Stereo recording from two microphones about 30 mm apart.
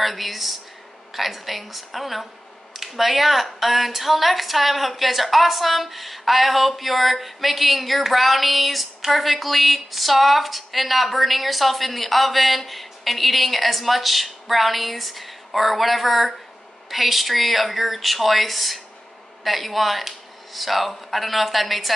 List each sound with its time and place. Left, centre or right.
0.0 s speech: centre